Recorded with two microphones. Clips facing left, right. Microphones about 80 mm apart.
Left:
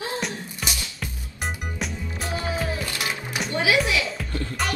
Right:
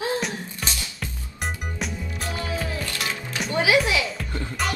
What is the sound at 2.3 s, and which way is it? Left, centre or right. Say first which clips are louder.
Music: left 2 dB; left.